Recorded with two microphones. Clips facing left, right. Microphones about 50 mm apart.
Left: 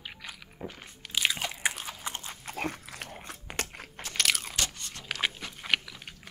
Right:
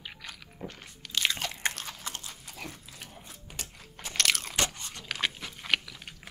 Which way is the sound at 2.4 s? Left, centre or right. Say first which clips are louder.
Left 8 dB; left.